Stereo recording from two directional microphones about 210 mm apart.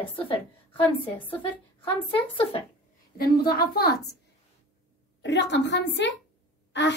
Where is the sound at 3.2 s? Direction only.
45° left (ahead or behind).